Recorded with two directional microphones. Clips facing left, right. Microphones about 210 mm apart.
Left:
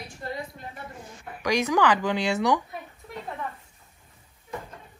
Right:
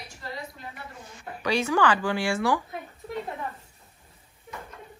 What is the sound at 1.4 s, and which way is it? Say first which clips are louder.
Speech: left 1 dB; 15° left (ahead or behind).